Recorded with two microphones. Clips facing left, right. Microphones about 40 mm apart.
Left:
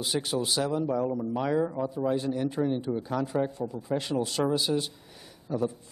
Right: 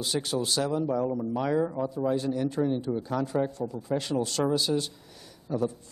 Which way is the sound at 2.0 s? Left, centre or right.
Centre.